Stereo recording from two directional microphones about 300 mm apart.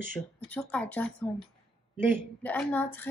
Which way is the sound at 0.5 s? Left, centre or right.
Centre.